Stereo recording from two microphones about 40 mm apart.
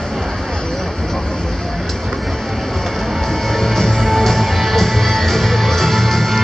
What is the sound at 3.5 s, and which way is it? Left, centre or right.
Music, centre.